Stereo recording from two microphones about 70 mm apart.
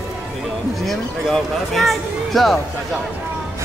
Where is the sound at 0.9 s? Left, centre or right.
Centre.